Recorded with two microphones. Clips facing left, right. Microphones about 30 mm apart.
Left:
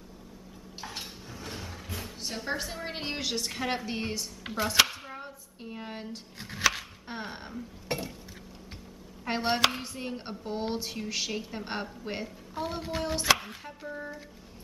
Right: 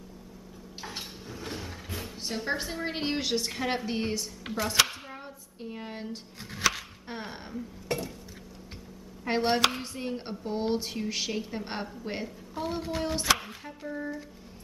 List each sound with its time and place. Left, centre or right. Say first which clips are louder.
0.7 s dishes: even; centre
4.6 s a sound: left 1 dB; centre
7.9 s stir: right 2 dB; left
9.2 s speech: right 1 dB; centre